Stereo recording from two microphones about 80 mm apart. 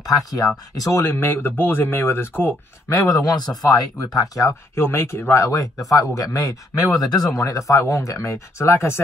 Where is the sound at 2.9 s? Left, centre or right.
Left.